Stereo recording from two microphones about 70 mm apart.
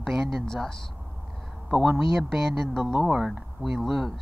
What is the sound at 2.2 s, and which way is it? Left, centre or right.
Speech, centre.